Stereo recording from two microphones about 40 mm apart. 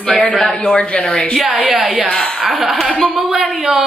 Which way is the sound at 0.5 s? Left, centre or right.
Left.